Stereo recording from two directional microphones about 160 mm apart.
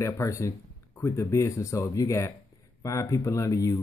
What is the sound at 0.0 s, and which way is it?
Speech, 20° left (ahead or behind).